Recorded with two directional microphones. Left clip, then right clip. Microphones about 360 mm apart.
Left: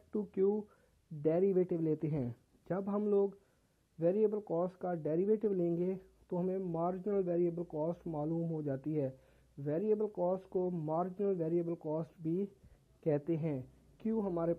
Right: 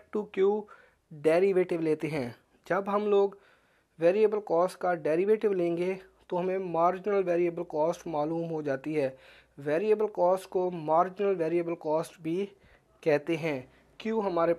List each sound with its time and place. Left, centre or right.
0.1 s speech: centre
0.5 s speech: centre
1.2 s speech: centre